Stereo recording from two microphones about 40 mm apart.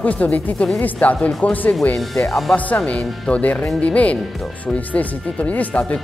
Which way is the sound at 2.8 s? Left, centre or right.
Left.